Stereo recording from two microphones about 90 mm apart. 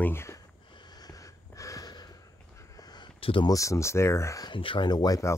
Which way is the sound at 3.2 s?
85° left.